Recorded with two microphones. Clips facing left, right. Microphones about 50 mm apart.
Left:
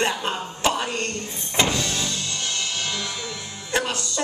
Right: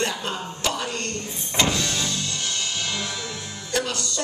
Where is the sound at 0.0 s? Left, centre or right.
Left.